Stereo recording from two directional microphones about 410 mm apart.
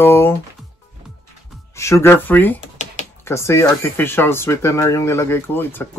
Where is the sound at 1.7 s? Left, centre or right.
Centre.